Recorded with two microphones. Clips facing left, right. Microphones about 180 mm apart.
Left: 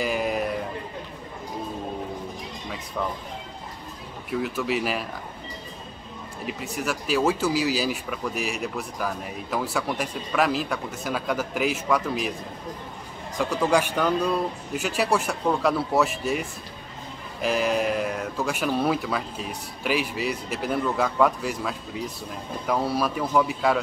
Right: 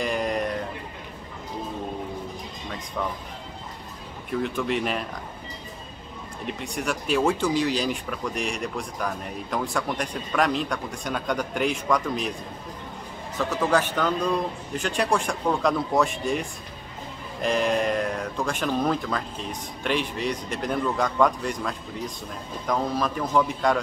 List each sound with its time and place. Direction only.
0.0 s a sound: 5° left (ahead or behind)
4.3 s speech: 5° left (ahead or behind)
6.4 s speech: 5° left (ahead or behind)
13.4 s speech: 10° left (ahead or behind)